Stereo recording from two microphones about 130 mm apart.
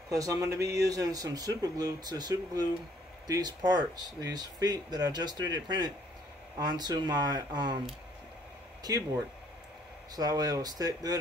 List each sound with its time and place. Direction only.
0.1 s speech: 25° right (ahead or behind)
8.8 s speech: 30° right (ahead or behind)